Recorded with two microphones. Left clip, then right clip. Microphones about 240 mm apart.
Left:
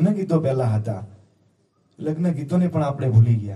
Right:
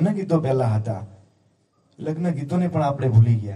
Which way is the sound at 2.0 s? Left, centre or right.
Right.